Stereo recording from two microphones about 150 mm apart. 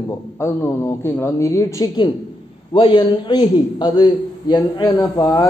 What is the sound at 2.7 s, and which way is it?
A man's voice, 35° left (ahead or behind).